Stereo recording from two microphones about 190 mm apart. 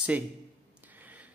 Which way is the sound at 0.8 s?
10° right (ahead or behind).